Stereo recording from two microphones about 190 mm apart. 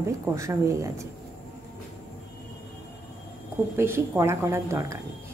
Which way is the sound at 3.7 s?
15° right (ahead or behind).